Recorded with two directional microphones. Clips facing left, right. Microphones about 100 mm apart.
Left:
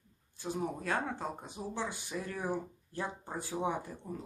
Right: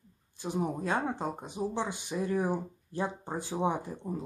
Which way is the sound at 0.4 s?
20° right (ahead or behind).